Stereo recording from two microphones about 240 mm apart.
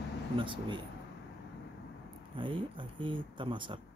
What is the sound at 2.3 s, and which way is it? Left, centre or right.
Speech, right.